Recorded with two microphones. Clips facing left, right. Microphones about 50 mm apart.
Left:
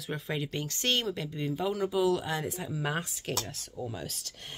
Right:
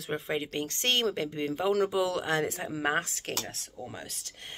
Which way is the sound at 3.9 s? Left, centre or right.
Right.